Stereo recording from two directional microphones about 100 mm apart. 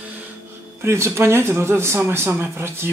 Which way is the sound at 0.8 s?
25° right (ahead or behind).